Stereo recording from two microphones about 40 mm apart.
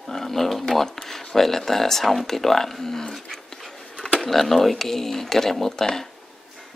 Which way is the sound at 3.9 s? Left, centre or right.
Centre.